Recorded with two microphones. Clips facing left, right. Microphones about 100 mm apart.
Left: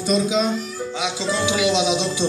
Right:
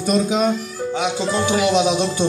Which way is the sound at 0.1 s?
50° right (ahead or behind).